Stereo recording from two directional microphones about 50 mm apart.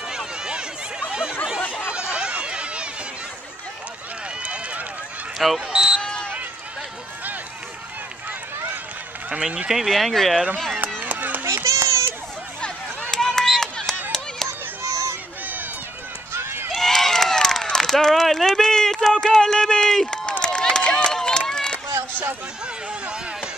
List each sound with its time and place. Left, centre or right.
0.1 s run: centre
1.8 s a sound: centre
4.4 s run: right
5.7 s speech: centre
6.0 s run: centre
9.3 s speech: right
9.7 s speech: centre
11.0 s run: right
11.4 s children playing: right
13.1 s chop: centre
14.8 s run: right
16.3 s run: right
16.7 s a sound: centre